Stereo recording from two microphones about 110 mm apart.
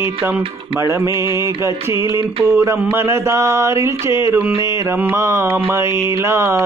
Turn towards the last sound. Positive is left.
turn(degrees=-25)  # may be behind; listen again after turning